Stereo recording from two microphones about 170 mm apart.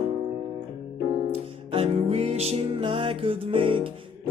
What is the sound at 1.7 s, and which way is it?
Music, 35° right (ahead or behind).